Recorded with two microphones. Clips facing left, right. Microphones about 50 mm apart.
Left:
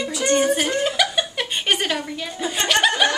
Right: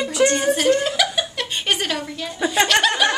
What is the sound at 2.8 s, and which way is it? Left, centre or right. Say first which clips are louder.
Chuckle: even; centre.